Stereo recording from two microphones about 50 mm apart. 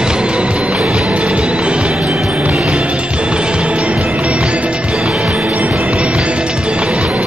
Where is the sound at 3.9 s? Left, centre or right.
Centre.